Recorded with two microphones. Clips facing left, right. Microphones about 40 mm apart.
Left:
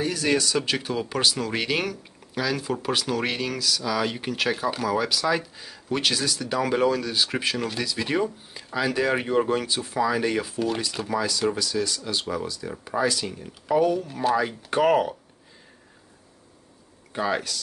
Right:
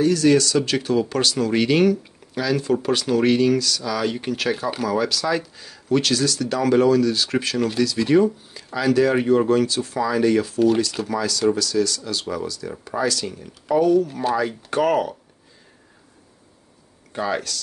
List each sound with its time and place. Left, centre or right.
0.0 s speech: centre
17.1 s speech: centre